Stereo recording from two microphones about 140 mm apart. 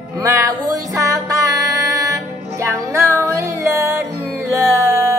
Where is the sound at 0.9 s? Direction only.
25° right (ahead or behind).